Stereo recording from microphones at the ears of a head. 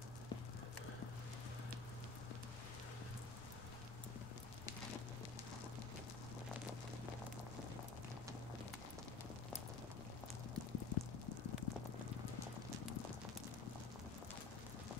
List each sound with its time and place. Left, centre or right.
10.5 s clip-clop: left